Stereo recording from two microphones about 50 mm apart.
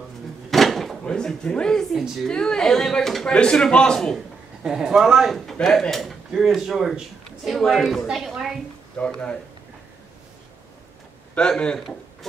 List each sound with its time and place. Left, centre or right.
0.5 s drawer open or close: centre
1.0 s speech: centre
3.3 s speech: centre
4.6 s a man's voice: centre
5.3 s speech: centre
9.0 s speech: left
11.3 s speech: centre